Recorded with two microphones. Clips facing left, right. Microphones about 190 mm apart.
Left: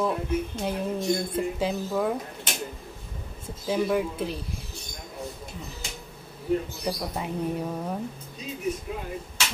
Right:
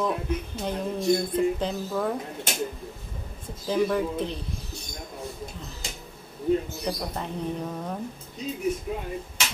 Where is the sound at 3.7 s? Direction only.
5° left (ahead or behind).